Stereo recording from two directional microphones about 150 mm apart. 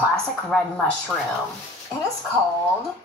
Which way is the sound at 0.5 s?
5° left (ahead or behind).